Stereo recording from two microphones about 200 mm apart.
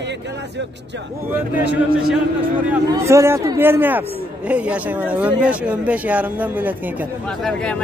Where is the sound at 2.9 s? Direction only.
15° right (ahead or behind).